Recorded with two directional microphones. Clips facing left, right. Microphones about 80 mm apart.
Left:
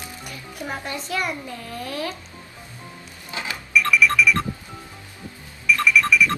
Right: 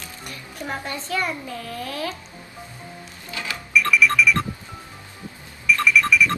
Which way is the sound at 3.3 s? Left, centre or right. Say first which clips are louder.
Left 1 dB; left.